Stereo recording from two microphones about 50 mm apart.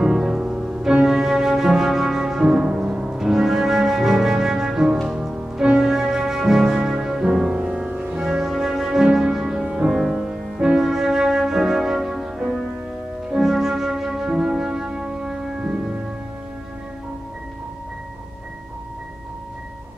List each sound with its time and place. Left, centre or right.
0.0 s music: centre